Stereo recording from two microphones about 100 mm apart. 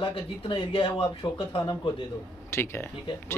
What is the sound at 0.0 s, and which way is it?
Speech, 60° left (ahead or behind).